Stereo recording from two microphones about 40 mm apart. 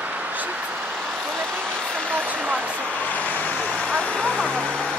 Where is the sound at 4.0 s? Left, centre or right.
Left.